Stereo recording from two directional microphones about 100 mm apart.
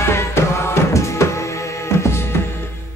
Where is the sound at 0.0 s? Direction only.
25° left (ahead or behind).